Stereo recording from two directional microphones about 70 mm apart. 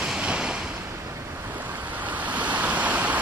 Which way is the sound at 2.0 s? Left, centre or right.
Right.